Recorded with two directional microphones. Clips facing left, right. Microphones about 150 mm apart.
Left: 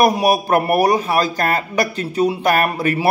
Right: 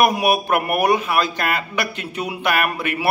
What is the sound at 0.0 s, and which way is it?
A man's voice, 35° left (ahead or behind).